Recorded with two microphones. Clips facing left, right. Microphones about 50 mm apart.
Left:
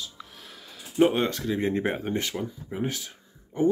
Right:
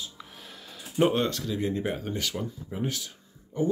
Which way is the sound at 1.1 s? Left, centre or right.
Left.